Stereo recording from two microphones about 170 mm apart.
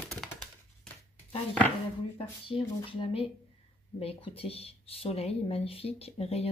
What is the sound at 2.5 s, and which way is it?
Speech, 30° left (ahead or behind).